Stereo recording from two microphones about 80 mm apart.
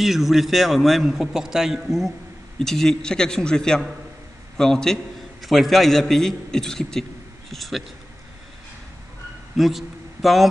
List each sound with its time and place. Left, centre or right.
0.0 s a man's voice: centre
9.6 s a man's voice: centre